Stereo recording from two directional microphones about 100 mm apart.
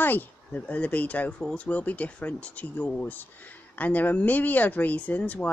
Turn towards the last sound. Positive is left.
turn(degrees=15)  # may be behind; listen again after turning